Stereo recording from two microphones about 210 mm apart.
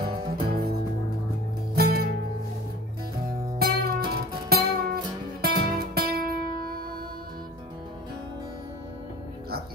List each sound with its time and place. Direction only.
0.5 s music: 45° right (ahead or behind)
1.8 s music: 45° right (ahead or behind)
3.5 s music: 45° right (ahead or behind)